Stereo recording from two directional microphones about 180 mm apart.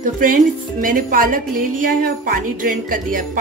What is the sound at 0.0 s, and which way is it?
A woman's voice, 50° right (ahead or behind).